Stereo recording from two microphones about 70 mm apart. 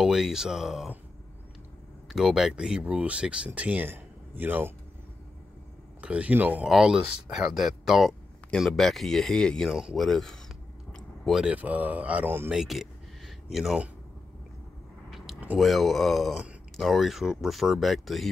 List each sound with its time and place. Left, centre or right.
0.0 s speech: centre
2.0 s speech: centre; by 4.7 s right
5.9 s speech: centre
6.6 s speech: centre
9.7 s speech: centre
10.9 s a sound: centre
11.5 s speech: right
12.4 s speech: centre
15.0 s a sound: centre
15.5 s speech: centre